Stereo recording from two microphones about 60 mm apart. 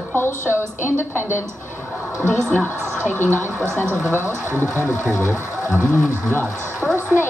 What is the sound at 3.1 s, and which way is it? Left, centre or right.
Speech, left.